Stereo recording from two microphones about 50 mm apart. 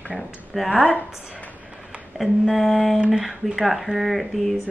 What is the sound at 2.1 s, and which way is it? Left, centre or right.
Speech, centre.